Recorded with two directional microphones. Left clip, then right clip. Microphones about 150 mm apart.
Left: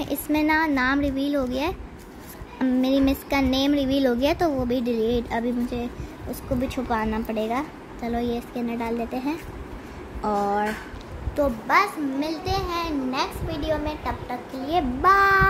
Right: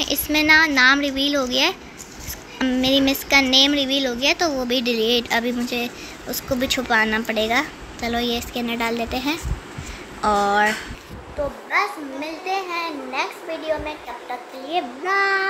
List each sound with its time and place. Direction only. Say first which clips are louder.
0.0 s speech: right 4 dB; 10° left (ahead or behind)
3.9 s speech: right 2 dB; 35° left (ahead or behind)
4.6 s a woman's voice: right 4 dB; 15° left (ahead or behind)
10.2 s speech: right 6 dB; 25° right (ahead or behind)
11.7 s a woman's voice: left 1 dB; 5° left (ahead or behind)